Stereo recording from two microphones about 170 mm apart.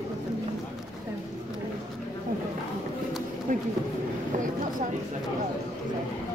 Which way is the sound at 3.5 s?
50° right (ahead or behind).